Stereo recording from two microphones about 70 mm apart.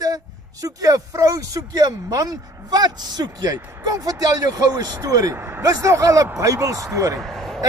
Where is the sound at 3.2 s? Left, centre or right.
Right.